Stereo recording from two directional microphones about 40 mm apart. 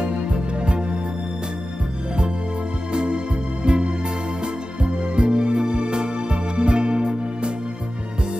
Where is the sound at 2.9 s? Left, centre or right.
Right.